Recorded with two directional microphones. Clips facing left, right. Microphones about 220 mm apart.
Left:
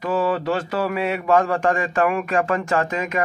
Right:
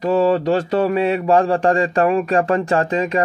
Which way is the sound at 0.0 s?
35° right (ahead or behind).